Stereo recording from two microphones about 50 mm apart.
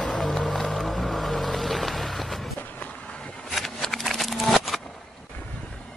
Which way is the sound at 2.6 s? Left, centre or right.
Left.